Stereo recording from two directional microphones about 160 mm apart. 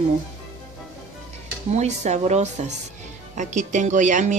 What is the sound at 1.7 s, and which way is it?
Speech, 45° right (ahead or behind).